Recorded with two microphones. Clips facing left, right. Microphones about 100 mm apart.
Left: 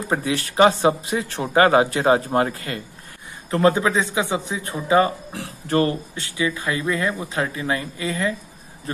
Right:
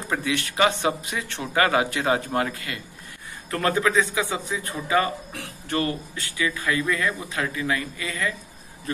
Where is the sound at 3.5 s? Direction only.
20° left (ahead or behind).